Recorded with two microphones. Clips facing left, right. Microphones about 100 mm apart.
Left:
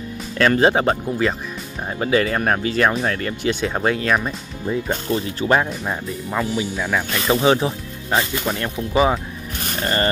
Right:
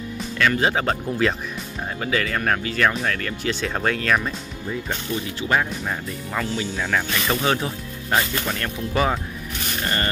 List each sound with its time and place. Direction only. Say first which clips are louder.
0.4 s speech: left 5 dB; 35° left (ahead or behind)
1.0 s speech: left 1 dB; 5° left (ahead or behind)
2.0 s speech: left 6 dB; 30° left (ahead or behind)
3.6 s speech: left 2 dB; 15° left (ahead or behind)
5.1 s speech: left 4 dB; 35° left (ahead or behind)
5.9 s speech: left 3 dB; 15° left (ahead or behind)
7.4 s speech: left 6 dB; 20° left (ahead or behind)